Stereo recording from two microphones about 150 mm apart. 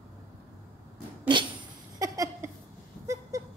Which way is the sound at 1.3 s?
30° right (ahead or behind).